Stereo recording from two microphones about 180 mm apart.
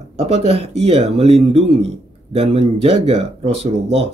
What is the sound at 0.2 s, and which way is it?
Speech, 35° right (ahead or behind).